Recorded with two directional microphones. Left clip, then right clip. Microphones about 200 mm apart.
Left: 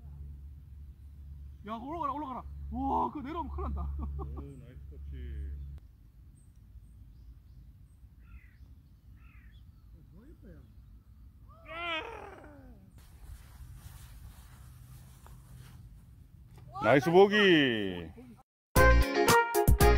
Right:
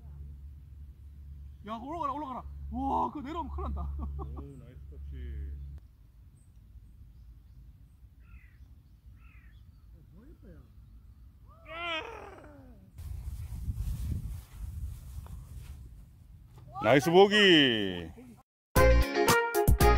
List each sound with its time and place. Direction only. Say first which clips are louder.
1.6 s speech: right 1 dB; 40° right (ahead or behind)
4.6 s a man's voice: even; 10° right (ahead or behind)
11.6 s a sound: even; 10° right (ahead or behind)
15.3 s walk: right 2 dB; 5° left (ahead or behind)
16.8 s a man's voice: right 1 dB; 15° right (ahead or behind)
18.7 s music: even; centre (ahead or behind)